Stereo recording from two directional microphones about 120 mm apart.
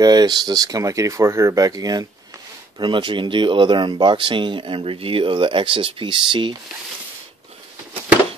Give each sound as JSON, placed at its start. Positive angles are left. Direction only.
{"t": 0.0, "sound": "speech", "side_deg": -35}